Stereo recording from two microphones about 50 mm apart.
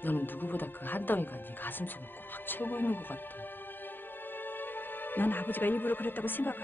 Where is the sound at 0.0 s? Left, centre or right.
Left.